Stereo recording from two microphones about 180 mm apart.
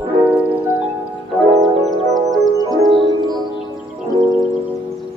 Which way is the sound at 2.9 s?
25° right (ahead or behind).